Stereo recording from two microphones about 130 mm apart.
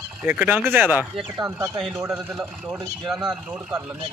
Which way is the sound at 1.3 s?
25° right (ahead or behind).